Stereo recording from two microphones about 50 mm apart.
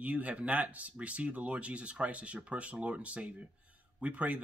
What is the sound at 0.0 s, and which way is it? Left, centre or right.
Speech, right.